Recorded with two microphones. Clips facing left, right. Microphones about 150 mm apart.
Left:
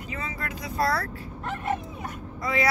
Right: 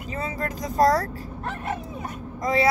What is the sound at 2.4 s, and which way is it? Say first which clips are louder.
Speech: right 4 dB; 35° right (ahead or behind).